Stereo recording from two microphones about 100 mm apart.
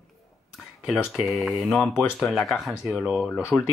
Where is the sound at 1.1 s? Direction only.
Centre (ahead or behind).